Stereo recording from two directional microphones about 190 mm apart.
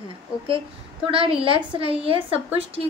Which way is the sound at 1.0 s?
30° right (ahead or behind).